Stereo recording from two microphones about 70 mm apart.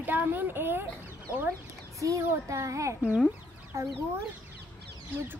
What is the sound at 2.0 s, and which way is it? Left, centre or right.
A child's voice, right.